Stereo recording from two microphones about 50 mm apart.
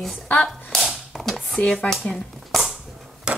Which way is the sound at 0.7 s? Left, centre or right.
Centre.